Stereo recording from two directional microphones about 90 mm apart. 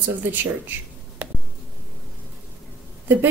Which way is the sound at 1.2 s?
20° right (ahead or behind).